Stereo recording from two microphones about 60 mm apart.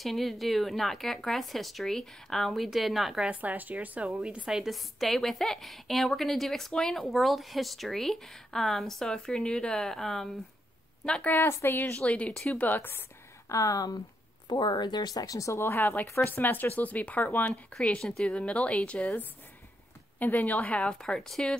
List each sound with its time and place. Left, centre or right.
0.0 s a woman's voice: centre
3.3 s speech: right
4.5 s a woman's voice: centre
11.2 s speech: left
12.1 s speech: left
13.5 s speech: left
15.9 s speech: left
17.8 s a woman's voice: centre